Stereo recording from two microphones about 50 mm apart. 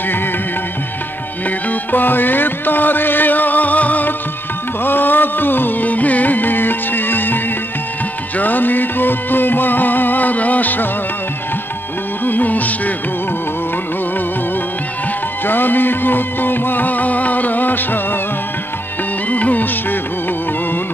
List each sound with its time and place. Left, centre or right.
1.7 s music: left
8.4 s music: left
12.3 s music: left
15.4 s music: left
19.3 s music: left